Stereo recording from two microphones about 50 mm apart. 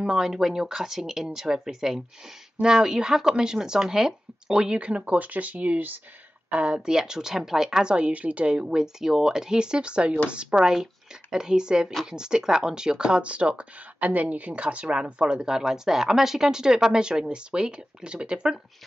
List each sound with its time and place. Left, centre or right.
0.0 s speech: centre; by 5.9 s right
6.5 s speech: right